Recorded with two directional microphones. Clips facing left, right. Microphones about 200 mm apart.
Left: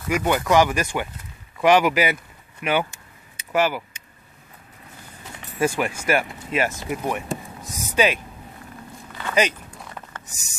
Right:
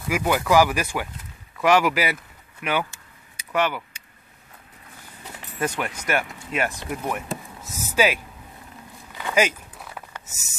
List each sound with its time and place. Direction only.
0.1 s speech: 5° right (ahead or behind)
2.8 s vehicle: 25° left (ahead or behind)
3.5 s speech: 5° left (ahead or behind)
5.6 s speech: 10° left (ahead or behind)
9.1 s a sound: 10° right (ahead or behind)
10.2 s a sound: 20° right (ahead or behind)